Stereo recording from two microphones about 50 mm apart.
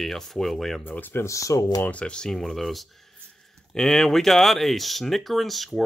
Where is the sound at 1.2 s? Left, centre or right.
Left.